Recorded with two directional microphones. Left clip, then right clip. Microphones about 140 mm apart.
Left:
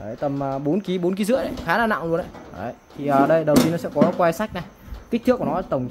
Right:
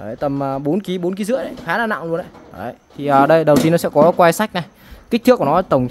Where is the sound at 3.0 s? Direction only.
50° right (ahead or behind).